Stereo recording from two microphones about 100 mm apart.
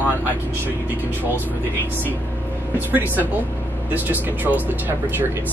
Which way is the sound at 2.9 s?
20° right (ahead or behind).